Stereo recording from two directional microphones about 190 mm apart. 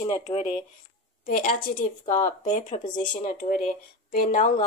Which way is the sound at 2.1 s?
40° left (ahead or behind).